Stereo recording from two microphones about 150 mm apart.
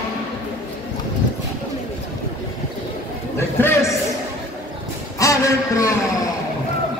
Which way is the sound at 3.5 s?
15° left (ahead or behind).